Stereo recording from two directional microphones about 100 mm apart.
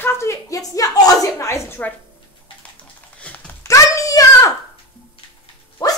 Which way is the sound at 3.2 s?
10° left (ahead or behind).